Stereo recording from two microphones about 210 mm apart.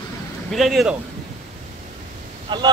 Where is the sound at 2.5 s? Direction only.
20° right (ahead or behind).